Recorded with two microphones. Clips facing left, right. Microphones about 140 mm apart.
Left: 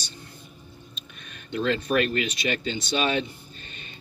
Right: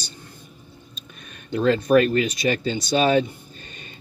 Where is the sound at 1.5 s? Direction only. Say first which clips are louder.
Right 7 dB; 35° right (ahead or behind).